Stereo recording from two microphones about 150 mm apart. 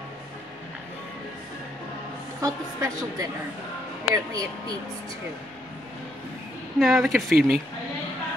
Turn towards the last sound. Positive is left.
turn(degrees=-5)  # may be behind; listen again after turning